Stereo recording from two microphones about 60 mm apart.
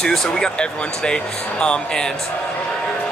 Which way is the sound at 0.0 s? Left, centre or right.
Centre.